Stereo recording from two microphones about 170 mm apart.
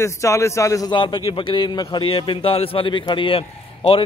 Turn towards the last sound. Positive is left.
turn(degrees=35)  # may be behind; listen again after turning